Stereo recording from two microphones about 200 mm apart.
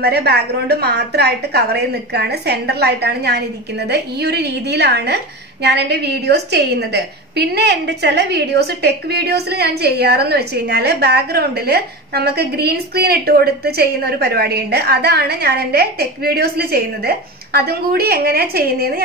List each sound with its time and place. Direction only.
0.0 s a woman's voice: 55° right (ahead or behind)